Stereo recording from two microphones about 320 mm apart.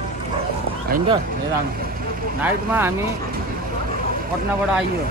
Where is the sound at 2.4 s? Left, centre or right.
Centre.